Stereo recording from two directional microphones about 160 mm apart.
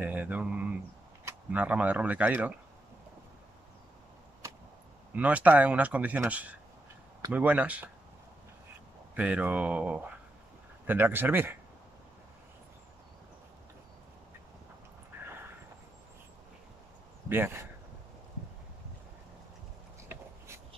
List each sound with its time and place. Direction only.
0.0 s speech: 10° right (ahead or behind)
5.1 s a man's voice: 10° right (ahead or behind)
9.1 s a man's voice: 10° right (ahead or behind)
15.1 s vehicle: 15° right (ahead or behind)
17.3 s a man's voice: 15° right (ahead or behind)
20.1 s a sound: 15° right (ahead or behind)